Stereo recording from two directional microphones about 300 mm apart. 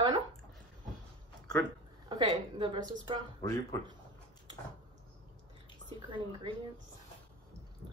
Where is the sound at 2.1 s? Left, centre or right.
Centre.